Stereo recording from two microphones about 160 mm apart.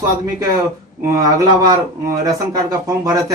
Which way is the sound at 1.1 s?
20° right (ahead or behind).